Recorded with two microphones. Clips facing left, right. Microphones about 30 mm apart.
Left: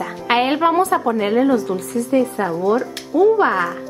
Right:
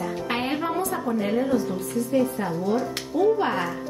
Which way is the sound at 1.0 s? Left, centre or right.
Left.